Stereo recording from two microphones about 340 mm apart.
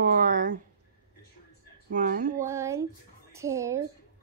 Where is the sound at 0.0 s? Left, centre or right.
Right.